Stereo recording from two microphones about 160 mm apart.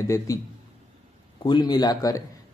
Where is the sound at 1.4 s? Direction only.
25° left (ahead or behind).